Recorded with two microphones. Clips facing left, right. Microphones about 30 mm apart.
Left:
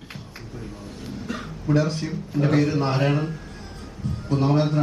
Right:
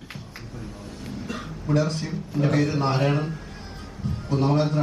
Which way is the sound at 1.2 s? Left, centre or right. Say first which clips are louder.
Left 4 dB; centre.